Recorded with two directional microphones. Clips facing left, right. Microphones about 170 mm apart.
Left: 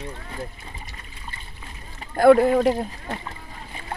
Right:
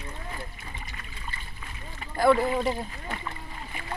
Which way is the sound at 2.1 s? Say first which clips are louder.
Left 8 dB; 50° left (ahead or behind).